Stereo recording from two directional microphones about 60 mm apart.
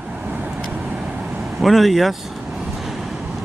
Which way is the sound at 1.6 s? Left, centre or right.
Centre.